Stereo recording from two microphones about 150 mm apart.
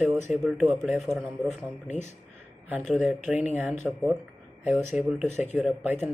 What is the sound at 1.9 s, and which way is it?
Speech, 50° left (ahead or behind).